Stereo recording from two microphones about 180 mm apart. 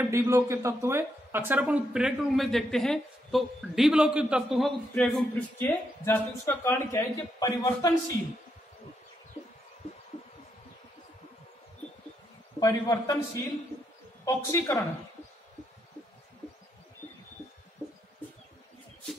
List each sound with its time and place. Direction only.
0.1 s a woman's voice: 15° right (ahead or behind); by 5.2 s centre (ahead or behind)
5.6 s speech: 10° left (ahead or behind)
12.5 s a man's voice: 20° left (ahead or behind)